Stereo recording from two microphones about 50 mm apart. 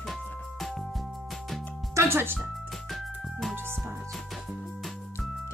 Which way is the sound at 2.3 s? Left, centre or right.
Centre.